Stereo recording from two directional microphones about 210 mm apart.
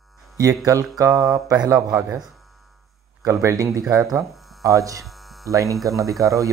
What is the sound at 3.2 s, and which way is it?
Speech, 15° right (ahead or behind).